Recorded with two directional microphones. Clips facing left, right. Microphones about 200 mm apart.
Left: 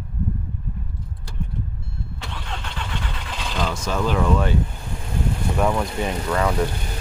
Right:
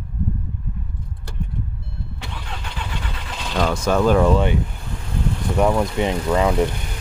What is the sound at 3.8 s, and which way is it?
Speech, 50° right (ahead or behind).